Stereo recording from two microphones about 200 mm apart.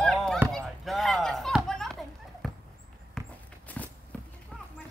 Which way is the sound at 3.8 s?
10° left (ahead or behind).